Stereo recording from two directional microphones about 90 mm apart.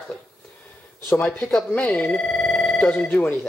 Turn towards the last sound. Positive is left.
turn(degrees=15)  # may be behind; listen again after turning